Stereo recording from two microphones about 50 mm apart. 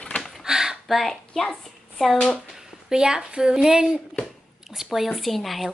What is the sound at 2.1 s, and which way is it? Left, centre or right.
Speech, centre.